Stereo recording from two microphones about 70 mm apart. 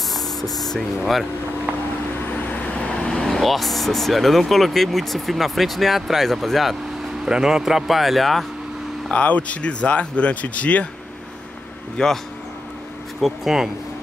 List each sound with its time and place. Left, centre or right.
0.1 s speech: centre
2.5 s speech: centre
7.2 s speech: centre
9.1 s speech: centre
12.0 s speech: centre
13.2 s speech: centre